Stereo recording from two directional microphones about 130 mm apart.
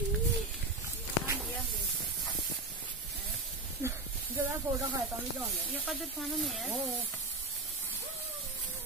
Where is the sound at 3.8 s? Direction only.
20° right (ahead or behind).